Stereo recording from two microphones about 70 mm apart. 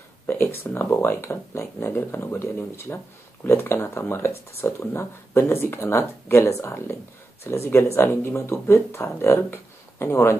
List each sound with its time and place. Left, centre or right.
0.3 s speech: left